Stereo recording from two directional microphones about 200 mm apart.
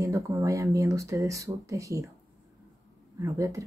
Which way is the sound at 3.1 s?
15° right (ahead or behind).